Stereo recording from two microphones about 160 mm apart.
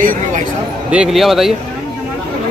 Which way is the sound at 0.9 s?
5° right (ahead or behind).